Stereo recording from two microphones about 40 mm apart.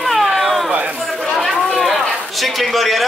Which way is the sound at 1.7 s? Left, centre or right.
Centre.